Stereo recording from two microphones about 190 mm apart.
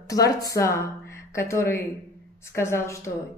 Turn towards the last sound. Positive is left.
turn(degrees=15)  # may be behind; listen again after turning